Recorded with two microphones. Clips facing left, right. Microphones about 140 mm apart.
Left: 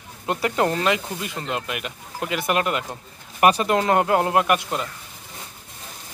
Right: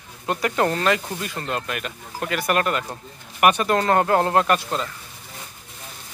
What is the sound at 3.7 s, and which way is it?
Speech, 15° left (ahead or behind).